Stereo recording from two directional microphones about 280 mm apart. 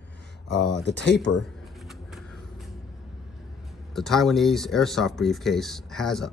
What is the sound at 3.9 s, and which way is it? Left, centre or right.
Speech, centre.